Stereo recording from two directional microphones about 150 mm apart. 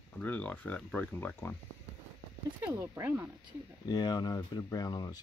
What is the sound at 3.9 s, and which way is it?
Speech, 30° left (ahead or behind).